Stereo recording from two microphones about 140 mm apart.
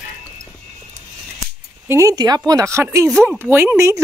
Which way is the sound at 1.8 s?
20° right (ahead or behind).